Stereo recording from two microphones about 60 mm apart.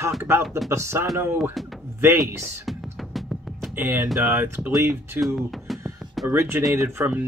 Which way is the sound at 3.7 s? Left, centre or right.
Right.